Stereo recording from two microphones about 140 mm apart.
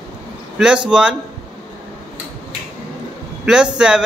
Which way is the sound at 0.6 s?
5° right (ahead or behind).